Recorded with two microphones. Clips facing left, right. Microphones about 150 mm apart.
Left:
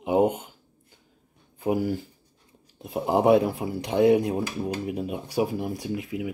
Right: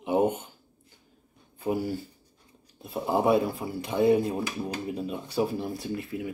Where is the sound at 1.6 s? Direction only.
20° left (ahead or behind).